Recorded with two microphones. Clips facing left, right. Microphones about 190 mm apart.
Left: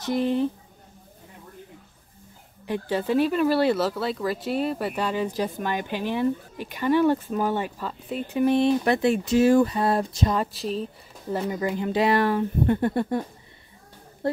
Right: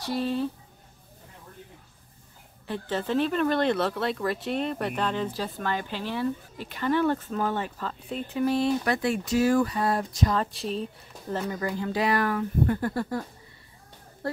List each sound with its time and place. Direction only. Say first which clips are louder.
0.0 s speech: left 4 dB; 20° left (ahead or behind)
2.6 s speech: left 4 dB; 15° left (ahead or behind)
10.5 s speech: left 2 dB; centre (ahead or behind)
11.3 s speech: left 3 dB; 15° left (ahead or behind)
14.2 s speech: left 6 dB; 20° left (ahead or behind)